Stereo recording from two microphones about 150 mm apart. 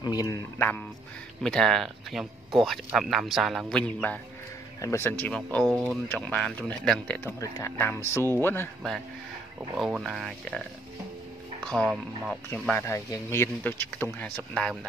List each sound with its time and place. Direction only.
0.0 s speech: 25° left (ahead or behind)
1.4 s speech: 5° left (ahead or behind)
7.3 s speech: 20° left (ahead or behind)
9.8 s speech: centre (ahead or behind)
11.6 s speech: 5° left (ahead or behind)
12.8 s speech: 20° left (ahead or behind)
14.5 s speech: centre (ahead or behind)